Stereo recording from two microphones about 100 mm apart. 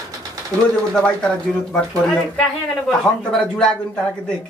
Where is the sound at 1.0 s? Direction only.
10° left (ahead or behind).